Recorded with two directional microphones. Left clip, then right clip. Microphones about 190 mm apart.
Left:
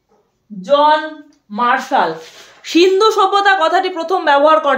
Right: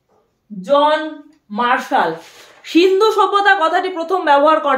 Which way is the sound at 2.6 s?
25° left (ahead or behind).